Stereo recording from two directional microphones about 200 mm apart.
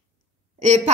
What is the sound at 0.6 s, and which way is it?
Speech, 35° right (ahead or behind).